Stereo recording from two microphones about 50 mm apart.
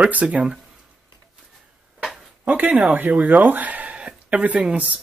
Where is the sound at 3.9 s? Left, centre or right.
Right.